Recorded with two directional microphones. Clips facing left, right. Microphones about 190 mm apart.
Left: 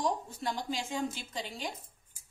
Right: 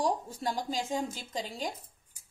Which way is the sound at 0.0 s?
40° right (ahead or behind).